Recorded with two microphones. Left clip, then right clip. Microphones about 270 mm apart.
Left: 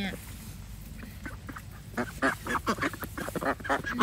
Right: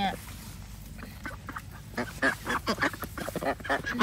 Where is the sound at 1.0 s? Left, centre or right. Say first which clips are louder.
Right 3 dB; centre.